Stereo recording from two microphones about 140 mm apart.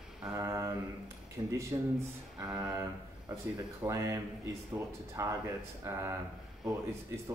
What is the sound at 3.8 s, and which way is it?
Speech, 20° right (ahead or behind).